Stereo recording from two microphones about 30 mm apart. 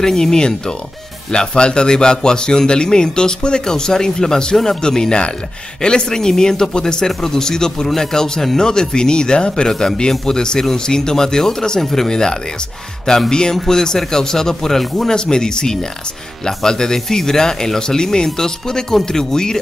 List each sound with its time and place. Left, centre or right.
0.0 s a man's voice: centre
12.1 s a man's voice: left
15.0 s a man's voice: centre